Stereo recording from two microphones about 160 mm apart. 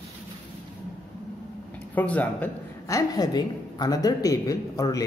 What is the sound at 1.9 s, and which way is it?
Speech, 10° left (ahead or behind).